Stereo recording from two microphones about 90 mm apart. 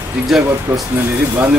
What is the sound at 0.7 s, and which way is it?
Speech, 15° right (ahead or behind).